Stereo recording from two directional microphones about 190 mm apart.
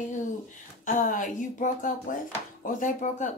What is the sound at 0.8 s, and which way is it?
A woman's voice, 45° left (ahead or behind).